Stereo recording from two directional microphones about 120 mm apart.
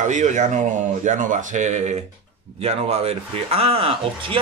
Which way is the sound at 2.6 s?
60° right (ahead or behind).